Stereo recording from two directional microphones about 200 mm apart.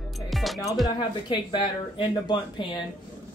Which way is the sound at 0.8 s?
20° left (ahead or behind).